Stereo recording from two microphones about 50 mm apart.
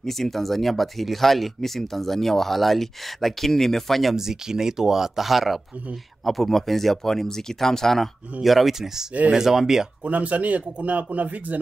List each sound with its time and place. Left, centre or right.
0.0 s speech: centre
4.1 s speech: centre
8.4 s speech: centre
10.0 s speech: right